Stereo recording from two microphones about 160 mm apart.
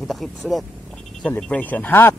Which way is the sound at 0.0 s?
Centre (ahead or behind).